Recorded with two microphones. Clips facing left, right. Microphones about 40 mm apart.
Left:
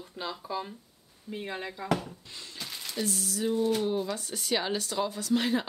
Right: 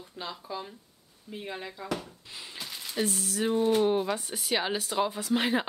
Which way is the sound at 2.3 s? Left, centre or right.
Centre.